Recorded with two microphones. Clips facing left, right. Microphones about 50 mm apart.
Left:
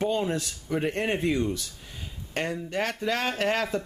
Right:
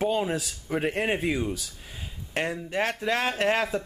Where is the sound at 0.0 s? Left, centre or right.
Centre.